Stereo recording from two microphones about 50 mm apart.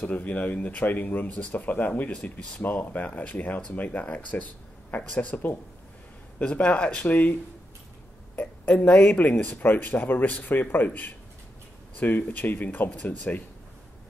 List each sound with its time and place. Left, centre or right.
0.0 s speech: left
8.4 s speech: left
13.1 s speech: left